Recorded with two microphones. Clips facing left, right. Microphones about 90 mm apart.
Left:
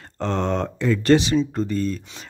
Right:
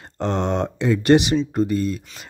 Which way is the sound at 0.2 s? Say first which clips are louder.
Right 1 dB; 20° right (ahead or behind).